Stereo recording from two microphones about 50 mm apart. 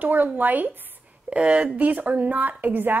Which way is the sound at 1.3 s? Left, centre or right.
Right.